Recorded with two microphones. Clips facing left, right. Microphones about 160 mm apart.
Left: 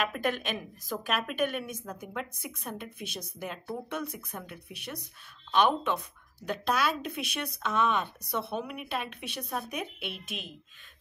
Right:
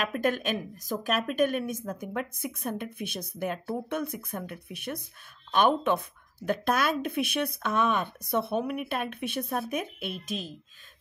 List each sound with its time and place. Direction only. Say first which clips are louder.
0.0 s a woman's voice: right 3 dB; 45° right (ahead or behind)